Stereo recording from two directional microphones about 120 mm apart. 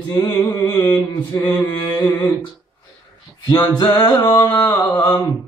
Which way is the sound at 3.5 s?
35° left (ahead or behind).